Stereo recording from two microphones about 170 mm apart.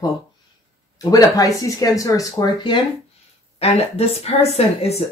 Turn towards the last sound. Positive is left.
turn(degrees=40)  # may be behind; listen again after turning